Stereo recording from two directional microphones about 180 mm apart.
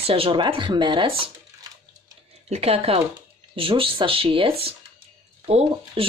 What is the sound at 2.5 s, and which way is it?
Speech, 35° right (ahead or behind).